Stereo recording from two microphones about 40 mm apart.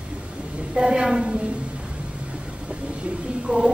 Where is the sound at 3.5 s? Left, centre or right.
Centre.